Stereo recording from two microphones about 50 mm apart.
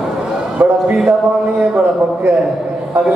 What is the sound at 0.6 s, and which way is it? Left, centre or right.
Speech, right.